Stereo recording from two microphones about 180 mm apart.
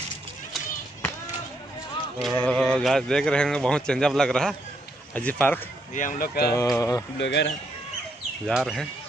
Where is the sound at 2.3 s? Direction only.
5° left (ahead or behind).